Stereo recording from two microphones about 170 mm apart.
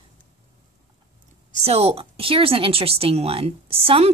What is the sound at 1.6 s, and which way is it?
Speech, 35° right (ahead or behind).